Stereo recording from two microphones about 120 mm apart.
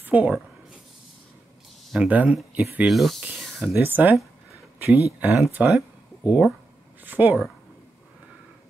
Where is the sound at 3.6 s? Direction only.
15° right (ahead or behind).